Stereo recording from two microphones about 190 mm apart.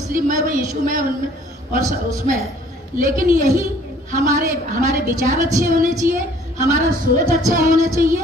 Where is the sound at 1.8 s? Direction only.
15° right (ahead or behind).